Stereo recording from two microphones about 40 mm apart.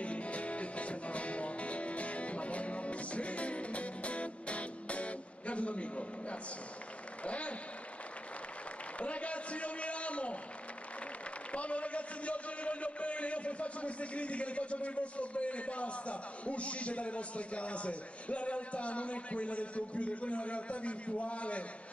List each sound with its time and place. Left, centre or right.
0.0 s music: left
7.2 s a man's voice: left
9.0 s a man's voice: left
11.5 s a man's voice: left